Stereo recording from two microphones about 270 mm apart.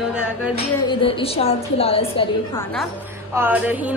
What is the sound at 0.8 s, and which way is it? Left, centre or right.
A woman's voice, centre.